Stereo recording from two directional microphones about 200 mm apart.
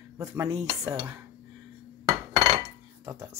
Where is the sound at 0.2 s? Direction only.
15° right (ahead or behind).